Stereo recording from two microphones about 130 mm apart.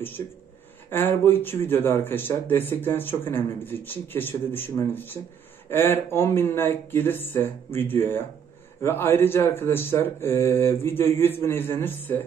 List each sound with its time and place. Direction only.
0.2 s speech: 30° left (ahead or behind)
0.8 s speech: 20° left (ahead or behind)